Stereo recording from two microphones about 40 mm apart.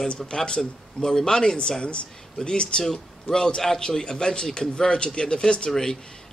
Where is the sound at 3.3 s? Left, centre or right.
Centre.